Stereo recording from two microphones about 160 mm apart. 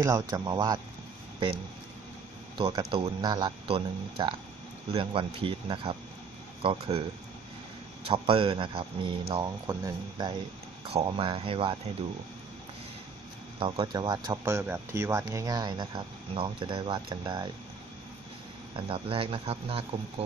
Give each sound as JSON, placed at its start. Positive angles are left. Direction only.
{"t": 0.0, "sound": "speech", "side_deg": -20}
{"t": 2.5, "sound": "speech", "side_deg": -25}
{"t": 8.1, "sound": "speech", "side_deg": -35}
{"t": 10.9, "sound": "speech", "side_deg": -35}
{"t": 13.6, "sound": "speech", "side_deg": -30}
{"t": 14.4, "sound": "speech", "side_deg": -15}
{"t": 18.9, "sound": "speech", "side_deg": -35}